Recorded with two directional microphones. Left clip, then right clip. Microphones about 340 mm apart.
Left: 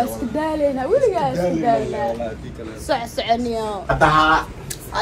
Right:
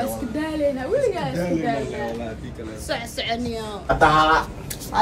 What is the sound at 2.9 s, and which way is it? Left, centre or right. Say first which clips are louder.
Speech: left 6 dB; centre.